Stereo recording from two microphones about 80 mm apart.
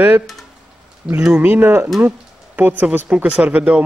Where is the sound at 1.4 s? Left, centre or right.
Right.